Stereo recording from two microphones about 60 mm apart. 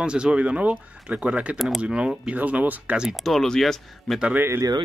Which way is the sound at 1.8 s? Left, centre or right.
Centre.